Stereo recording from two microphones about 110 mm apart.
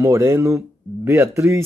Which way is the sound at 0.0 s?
25° right (ahead or behind).